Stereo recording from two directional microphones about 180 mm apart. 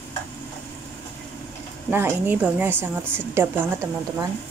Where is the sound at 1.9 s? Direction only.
10° right (ahead or behind).